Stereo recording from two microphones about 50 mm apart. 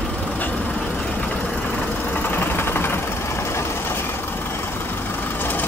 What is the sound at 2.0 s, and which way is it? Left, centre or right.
Vehicle, left.